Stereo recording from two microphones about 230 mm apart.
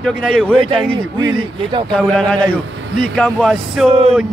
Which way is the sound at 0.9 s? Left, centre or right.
Centre.